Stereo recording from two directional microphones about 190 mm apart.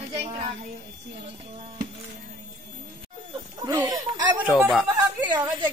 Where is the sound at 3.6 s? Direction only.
15° right (ahead or behind).